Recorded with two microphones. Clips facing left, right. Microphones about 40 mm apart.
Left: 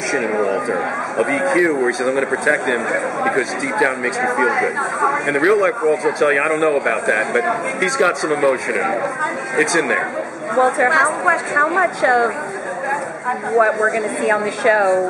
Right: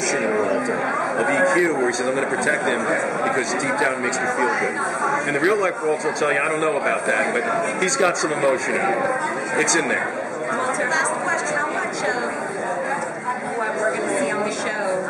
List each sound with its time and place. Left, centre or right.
1.1 s a man's voice: centre
14.2 s a woman's voice: left